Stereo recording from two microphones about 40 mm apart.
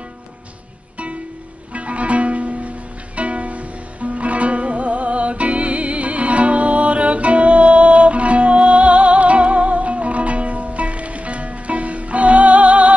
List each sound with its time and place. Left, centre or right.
1.7 s music: right